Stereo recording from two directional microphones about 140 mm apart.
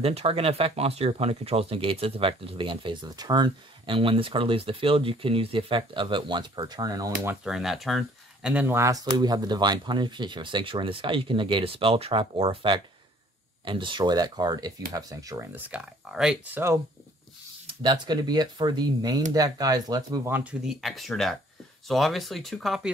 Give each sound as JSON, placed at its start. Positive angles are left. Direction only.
{"t": 0.0, "sound": "speech", "side_deg": -45}
{"t": 7.4, "sound": "speech", "side_deg": 0}
{"t": 8.6, "sound": "speech", "side_deg": -20}
{"t": 15.5, "sound": "speech", "side_deg": -10}
{"t": 16.5, "sound": "speech", "side_deg": -20}
{"t": 17.6, "sound": "speech", "side_deg": -35}
{"t": 20.2, "sound": "speech", "side_deg": -15}
{"t": 20.6, "sound": "speech", "side_deg": 0}